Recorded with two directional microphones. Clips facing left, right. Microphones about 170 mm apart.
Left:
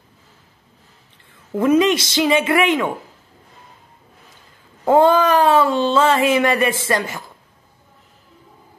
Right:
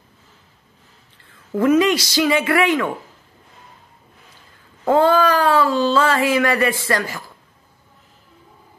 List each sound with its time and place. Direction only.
1.3 s speech: 20° left (ahead or behind)
4.8 s speech: 20° left (ahead or behind)